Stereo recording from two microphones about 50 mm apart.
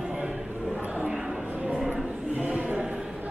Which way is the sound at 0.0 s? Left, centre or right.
Centre.